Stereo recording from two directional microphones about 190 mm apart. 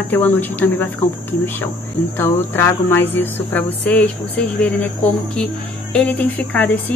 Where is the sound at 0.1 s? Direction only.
10° left (ahead or behind).